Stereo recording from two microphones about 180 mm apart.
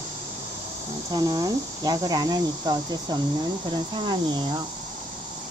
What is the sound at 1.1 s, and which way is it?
Speech, 20° right (ahead or behind).